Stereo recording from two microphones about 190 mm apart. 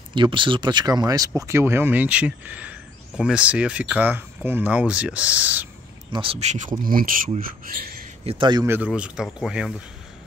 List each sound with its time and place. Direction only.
0.1 s speech: 25° right (ahead or behind); by 5.7 s 10° right (ahead or behind)
6.1 s speech: 30° right (ahead or behind)
6.8 s speech: 50° right (ahead or behind)
8.3 s speech: 25° right (ahead or behind)
8.6 s speech: 10° right (ahead or behind)